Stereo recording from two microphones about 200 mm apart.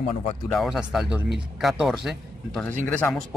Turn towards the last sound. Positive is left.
turn(degrees=10)  # may be behind; listen again after turning